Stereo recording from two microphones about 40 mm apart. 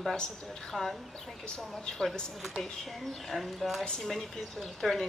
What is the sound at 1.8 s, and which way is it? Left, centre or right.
A man's voice, centre.